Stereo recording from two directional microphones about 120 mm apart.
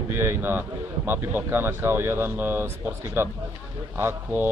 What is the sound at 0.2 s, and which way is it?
A man's voice, 20° right (ahead or behind).